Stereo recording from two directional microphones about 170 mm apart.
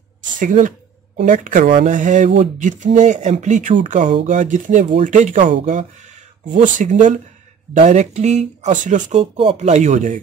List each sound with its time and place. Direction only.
0.4 s speech: 50° right (ahead or behind)